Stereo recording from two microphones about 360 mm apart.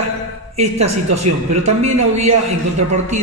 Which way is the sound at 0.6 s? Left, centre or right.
Centre.